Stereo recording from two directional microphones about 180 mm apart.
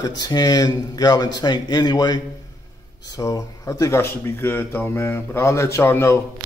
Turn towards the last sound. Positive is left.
turn(degrees=15)  # may be behind; listen again after turning